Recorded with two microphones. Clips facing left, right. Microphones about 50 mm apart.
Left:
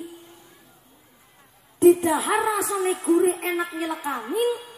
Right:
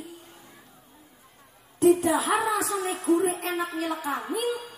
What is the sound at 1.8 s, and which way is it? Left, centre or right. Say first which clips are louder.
A woman's voice: left 4 dB; left.